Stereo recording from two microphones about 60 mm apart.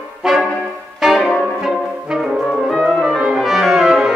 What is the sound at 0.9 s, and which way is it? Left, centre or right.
Music, centre.